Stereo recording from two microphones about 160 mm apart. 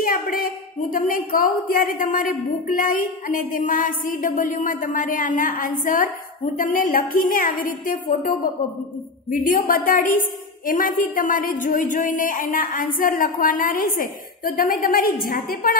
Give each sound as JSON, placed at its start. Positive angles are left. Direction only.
{"t": 0.0, "sound": "a woman's voice", "side_deg": 60}